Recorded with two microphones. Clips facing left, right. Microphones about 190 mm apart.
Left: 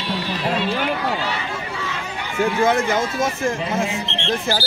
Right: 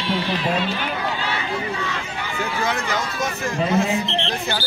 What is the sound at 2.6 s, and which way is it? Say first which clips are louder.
Speech: left 7 dB; 50° left (ahead or behind).